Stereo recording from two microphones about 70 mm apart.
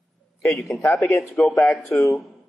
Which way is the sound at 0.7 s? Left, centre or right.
Left.